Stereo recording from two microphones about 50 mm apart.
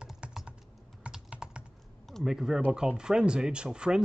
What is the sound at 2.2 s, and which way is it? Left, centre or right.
Speech, centre.